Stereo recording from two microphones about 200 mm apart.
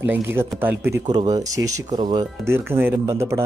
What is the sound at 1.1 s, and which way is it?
Speech, 20° right (ahead or behind).